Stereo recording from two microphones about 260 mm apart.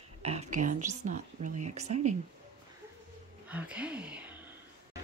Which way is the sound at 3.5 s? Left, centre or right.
Centre.